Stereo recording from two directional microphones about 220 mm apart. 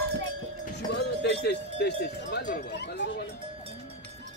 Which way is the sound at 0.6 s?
45° left (ahead or behind).